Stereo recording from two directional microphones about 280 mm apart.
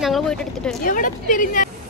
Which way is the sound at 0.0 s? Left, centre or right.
Centre.